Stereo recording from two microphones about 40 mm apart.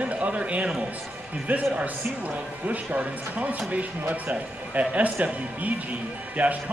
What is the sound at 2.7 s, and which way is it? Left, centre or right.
Speech, right.